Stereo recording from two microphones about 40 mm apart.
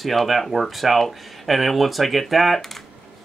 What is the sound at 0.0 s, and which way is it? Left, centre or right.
Speech, centre.